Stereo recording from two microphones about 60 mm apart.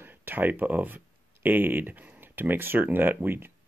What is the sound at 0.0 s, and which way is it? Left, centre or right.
Speech, right.